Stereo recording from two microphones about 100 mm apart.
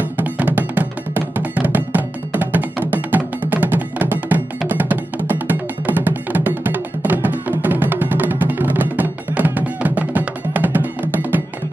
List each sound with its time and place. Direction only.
0.2 s music: 20° right (ahead or behind)